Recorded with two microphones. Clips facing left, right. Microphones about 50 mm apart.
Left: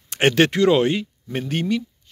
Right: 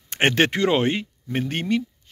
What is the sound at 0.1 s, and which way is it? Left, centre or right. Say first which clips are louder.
Speech: left 2 dB; right.